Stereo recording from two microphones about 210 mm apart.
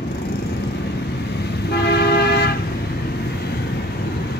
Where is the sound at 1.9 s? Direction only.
50° left (ahead or behind).